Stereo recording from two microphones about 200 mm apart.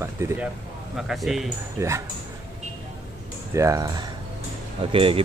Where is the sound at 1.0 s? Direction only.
Centre (ahead or behind).